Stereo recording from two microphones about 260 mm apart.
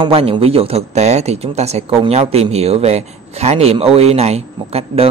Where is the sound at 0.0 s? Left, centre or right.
Right.